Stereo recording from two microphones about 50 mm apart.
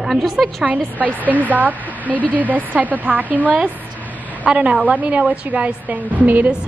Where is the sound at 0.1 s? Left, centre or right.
Centre.